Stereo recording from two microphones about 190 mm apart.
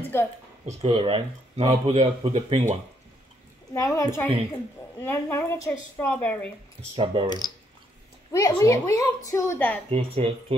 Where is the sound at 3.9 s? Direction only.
15° left (ahead or behind).